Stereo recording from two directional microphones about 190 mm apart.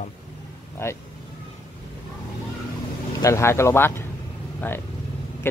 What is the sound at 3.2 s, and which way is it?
Speech, 15° left (ahead or behind).